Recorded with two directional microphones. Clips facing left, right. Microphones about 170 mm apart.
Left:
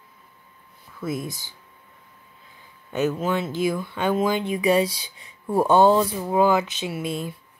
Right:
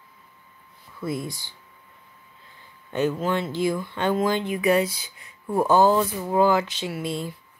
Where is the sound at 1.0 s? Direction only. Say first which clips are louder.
Even; 20° left (ahead or behind).